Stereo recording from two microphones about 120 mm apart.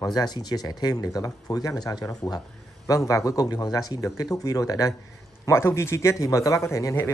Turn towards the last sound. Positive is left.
turn(degrees=25)  # may be behind; listen again after turning